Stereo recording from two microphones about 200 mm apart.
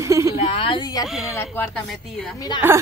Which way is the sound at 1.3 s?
10° left (ahead or behind).